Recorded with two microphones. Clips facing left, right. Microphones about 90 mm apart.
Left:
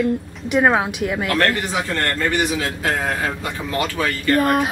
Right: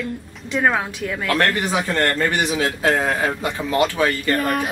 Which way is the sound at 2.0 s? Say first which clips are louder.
Left 1 dB; 25° right (ahead or behind).